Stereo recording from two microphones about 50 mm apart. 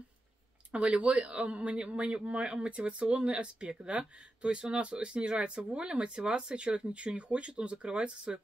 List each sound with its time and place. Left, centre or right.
0.7 s speech: right